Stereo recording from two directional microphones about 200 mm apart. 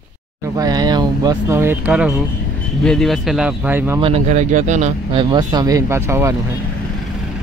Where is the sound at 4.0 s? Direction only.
35° right (ahead or behind); by 6.3 s 15° right (ahead or behind).